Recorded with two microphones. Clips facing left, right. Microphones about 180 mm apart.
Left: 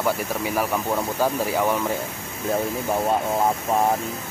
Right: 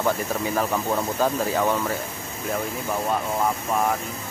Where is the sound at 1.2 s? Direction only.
10° left (ahead or behind).